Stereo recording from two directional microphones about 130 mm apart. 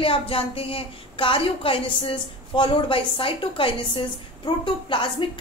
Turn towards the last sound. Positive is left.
turn(degrees=40)  # may be behind; listen again after turning